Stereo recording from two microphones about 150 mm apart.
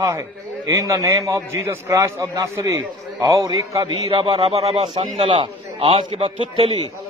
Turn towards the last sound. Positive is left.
turn(degrees=-35)  # may be behind; listen again after turning